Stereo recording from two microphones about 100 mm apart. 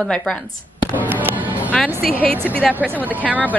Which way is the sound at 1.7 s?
15° left (ahead or behind).